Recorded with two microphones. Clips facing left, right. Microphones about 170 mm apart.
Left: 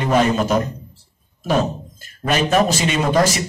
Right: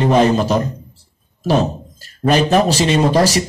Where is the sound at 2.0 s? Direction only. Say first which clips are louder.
Right 5 dB; 35° right (ahead or behind).